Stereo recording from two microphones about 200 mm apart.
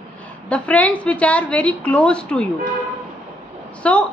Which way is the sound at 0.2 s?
5° left (ahead or behind).